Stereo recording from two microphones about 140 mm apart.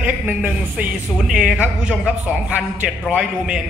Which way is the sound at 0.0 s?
10° right (ahead or behind).